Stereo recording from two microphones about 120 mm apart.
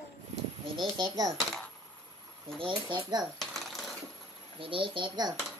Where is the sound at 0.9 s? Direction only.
35° right (ahead or behind).